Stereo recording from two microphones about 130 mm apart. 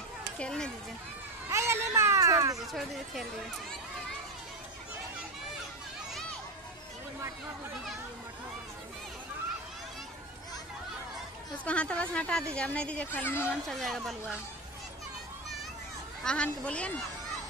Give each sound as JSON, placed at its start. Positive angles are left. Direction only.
{"t": 0.4, "sound": "speech", "side_deg": 5}
{"t": 1.5, "sound": "a sound", "side_deg": -20}
{"t": 2.6, "sound": "speech", "side_deg": 0}
{"t": 11.6, "sound": "speech", "side_deg": 10}
{"t": 13.7, "sound": "speech", "side_deg": 0}
{"t": 16.3, "sound": "speech", "side_deg": 10}